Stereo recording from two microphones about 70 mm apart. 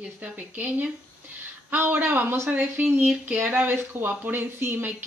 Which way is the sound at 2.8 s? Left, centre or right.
Right.